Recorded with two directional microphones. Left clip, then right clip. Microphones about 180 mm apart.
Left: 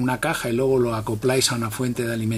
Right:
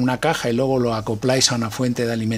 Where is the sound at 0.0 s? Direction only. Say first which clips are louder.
Right 4 dB; 45° right (ahead or behind).